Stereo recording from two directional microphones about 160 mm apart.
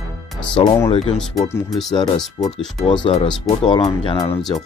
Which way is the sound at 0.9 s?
40° left (ahead or behind).